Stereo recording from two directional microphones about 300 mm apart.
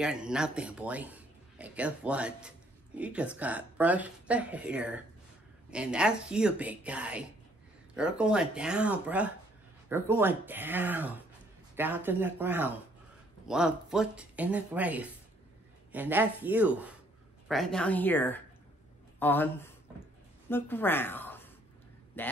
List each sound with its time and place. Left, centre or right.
0.0 s a woman's voice: centre